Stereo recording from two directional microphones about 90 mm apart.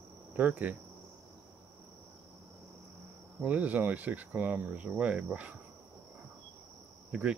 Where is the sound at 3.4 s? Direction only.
15° right (ahead or behind).